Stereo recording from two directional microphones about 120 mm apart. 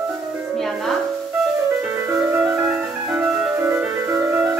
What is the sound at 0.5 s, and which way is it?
Music, centre (ahead or behind).